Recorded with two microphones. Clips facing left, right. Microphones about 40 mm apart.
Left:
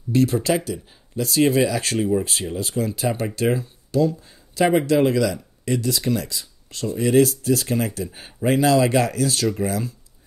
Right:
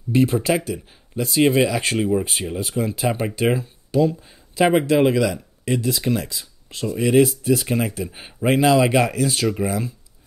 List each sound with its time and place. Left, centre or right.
0.1 s speech: right